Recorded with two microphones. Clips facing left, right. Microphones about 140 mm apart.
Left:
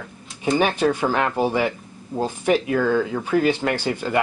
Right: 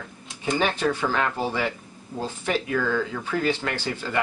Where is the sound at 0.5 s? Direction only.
15° left (ahead or behind).